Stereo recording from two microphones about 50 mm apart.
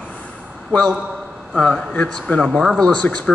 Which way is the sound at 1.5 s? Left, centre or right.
Centre.